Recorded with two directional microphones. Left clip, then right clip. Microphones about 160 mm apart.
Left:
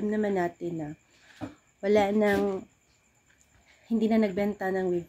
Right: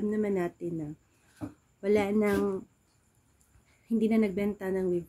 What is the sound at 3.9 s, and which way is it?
Speech, 20° right (ahead or behind).